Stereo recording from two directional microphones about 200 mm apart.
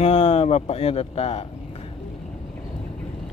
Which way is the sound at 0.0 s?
30° left (ahead or behind).